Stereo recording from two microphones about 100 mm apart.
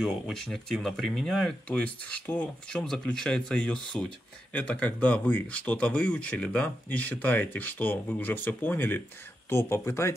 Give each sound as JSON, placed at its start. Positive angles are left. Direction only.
{"t": 0.0, "sound": "speech", "side_deg": 5}
{"t": 1.7, "sound": "speech", "side_deg": 10}